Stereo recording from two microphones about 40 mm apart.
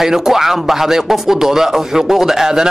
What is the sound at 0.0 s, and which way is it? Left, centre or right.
A woman's voice, centre.